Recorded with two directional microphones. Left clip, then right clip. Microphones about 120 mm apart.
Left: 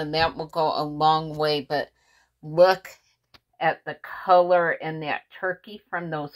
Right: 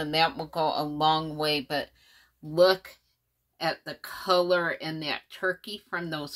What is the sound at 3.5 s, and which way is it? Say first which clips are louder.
Speech: left 6 dB; 15° right (ahead or behind).